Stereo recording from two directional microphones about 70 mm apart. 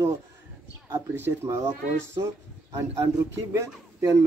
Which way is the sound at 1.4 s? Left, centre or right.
Right.